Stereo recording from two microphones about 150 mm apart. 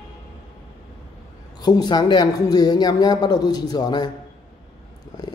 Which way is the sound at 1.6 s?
30° left (ahead or behind).